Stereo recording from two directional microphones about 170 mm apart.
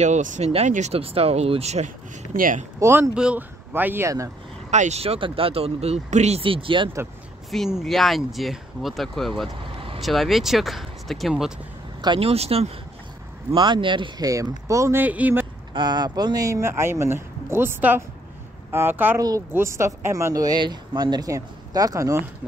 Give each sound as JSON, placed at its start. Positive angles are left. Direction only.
{"t": 0.0, "sound": "speech", "side_deg": -45}
{"t": 2.3, "sound": "speech", "side_deg": -55}
{"t": 2.8, "sound": "speech", "side_deg": -10}
{"t": 4.6, "sound": "speech", "side_deg": -45}
{"t": 7.8, "sound": "speech", "side_deg": 0}
{"t": 12.0, "sound": "speech", "side_deg": -30}
{"t": 15.7, "sound": "speech", "side_deg": -25}